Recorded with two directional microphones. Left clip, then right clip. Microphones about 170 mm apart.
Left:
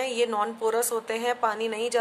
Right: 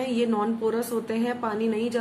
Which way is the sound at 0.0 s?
20° left (ahead or behind).